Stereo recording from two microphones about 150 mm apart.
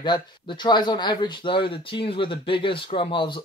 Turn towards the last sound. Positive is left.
turn(degrees=35)  # may be behind; listen again after turning